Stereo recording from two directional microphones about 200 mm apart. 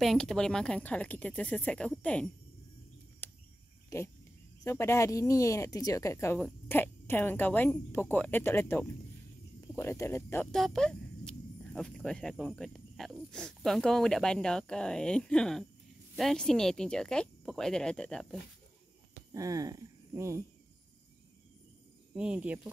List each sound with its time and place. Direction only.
0.0 s speech: centre (ahead or behind)
3.2 s cricket: 10° left (ahead or behind)
3.9 s a sound: 15° left (ahead or behind)
4.6 s speech: 15° left (ahead or behind)
19.3 s speech: 15° right (ahead or behind)
22.1 s speech: 5° right (ahead or behind)